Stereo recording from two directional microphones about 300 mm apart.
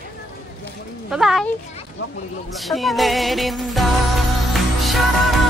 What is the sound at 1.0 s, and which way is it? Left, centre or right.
Speech, centre.